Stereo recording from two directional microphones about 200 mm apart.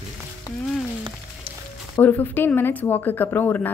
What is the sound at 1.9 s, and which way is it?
Speech, 10° left (ahead or behind).